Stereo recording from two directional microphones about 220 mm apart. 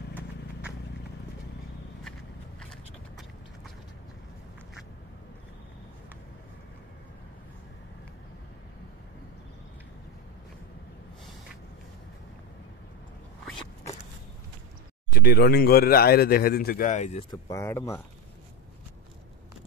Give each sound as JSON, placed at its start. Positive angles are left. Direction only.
{"t": 0.1, "sound": "clip-clop", "side_deg": -5}
{"t": 2.7, "sound": "a sound", "side_deg": 0}
{"t": 15.1, "sound": "speech", "side_deg": 45}
{"t": 17.3, "sound": "speech", "side_deg": 15}